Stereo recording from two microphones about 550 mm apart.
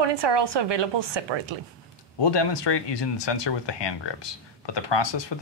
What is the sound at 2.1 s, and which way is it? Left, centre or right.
Speech, left.